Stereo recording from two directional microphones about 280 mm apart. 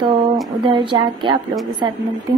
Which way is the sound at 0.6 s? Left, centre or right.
Centre.